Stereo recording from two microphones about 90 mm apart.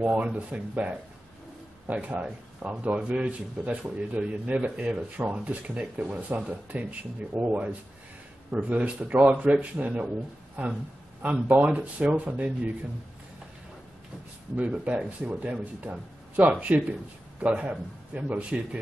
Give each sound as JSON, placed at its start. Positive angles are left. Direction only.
{"t": 0.0, "sound": "a man's voice", "side_deg": -15}
{"t": 14.6, "sound": "a man's voice", "side_deg": -15}